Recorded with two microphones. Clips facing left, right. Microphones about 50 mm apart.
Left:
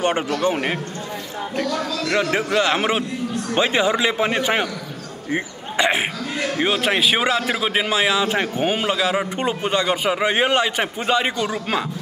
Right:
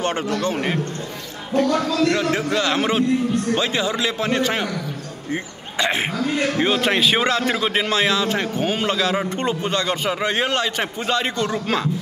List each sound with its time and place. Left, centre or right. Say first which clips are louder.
0.0 s a man's voice: left 2 dB; centre
2.0 s a man's voice: even; left